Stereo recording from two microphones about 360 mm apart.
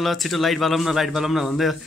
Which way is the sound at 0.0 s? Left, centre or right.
Centre.